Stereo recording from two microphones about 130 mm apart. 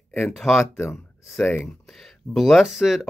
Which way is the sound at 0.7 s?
20° left (ahead or behind).